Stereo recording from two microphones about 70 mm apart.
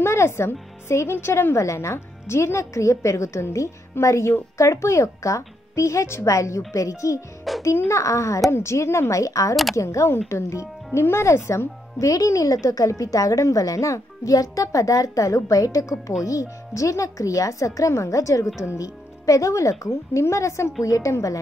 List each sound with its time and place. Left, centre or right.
0.0 s speech: left
7.5 s music: centre
7.9 s speech: left